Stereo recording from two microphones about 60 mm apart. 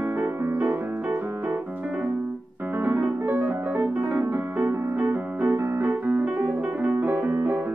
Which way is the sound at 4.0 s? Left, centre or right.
Right.